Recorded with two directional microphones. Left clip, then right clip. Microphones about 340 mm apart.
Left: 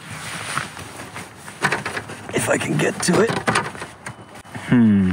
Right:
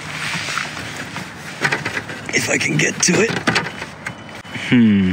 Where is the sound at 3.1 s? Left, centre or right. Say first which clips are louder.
Right 1 dB; left.